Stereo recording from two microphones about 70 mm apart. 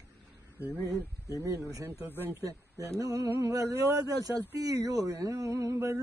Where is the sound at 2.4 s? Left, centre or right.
Right.